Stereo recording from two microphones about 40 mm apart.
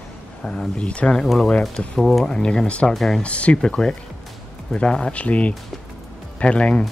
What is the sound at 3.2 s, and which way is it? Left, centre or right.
Speech, left.